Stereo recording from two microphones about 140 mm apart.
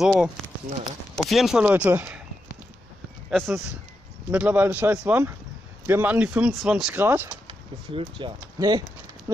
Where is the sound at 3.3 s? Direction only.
Centre (ahead or behind).